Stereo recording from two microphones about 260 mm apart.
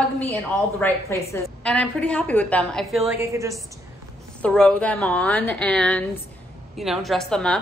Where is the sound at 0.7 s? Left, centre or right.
Centre.